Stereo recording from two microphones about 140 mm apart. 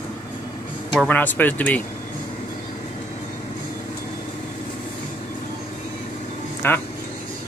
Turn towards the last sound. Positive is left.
turn(degrees=15)  # may be behind; listen again after turning